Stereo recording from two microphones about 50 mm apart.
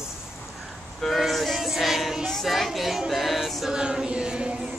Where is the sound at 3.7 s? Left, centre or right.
Centre.